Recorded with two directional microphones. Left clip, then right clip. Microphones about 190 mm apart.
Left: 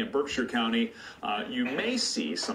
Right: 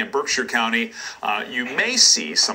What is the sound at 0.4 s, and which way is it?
Speech, 15° right (ahead or behind).